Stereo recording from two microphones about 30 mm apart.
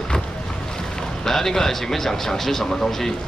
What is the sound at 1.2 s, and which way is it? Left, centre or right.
Speech, centre.